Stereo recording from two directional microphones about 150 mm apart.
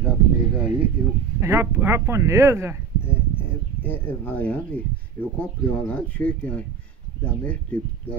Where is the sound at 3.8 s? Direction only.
10° left (ahead or behind).